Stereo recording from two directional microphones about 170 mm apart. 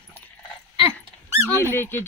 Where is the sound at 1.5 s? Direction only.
15° left (ahead or behind).